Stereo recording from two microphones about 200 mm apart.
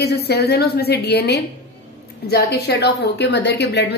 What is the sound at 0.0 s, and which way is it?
A woman's voice, 55° left (ahead or behind).